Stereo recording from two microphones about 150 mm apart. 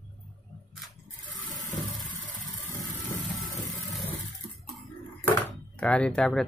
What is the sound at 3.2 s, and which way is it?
Vehicle, centre (ahead or behind).